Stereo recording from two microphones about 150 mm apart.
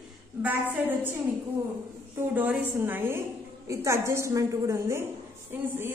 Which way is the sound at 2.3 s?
10° right (ahead or behind).